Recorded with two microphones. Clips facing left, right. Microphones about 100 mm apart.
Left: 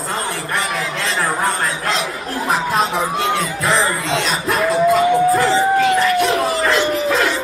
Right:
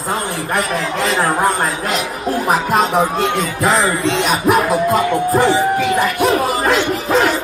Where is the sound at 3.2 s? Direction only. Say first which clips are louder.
Right 2 dB; centre (ahead or behind).